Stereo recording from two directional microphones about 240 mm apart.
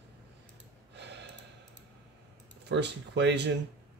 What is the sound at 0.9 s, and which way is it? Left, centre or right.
Gasp, right.